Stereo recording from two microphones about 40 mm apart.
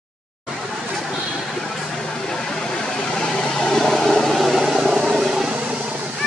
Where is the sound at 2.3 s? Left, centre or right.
Centre.